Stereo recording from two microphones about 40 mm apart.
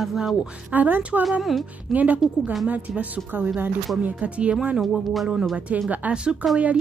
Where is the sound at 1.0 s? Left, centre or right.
Right.